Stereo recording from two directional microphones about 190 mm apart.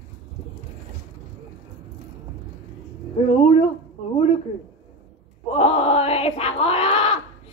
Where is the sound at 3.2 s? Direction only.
30° left (ahead or behind).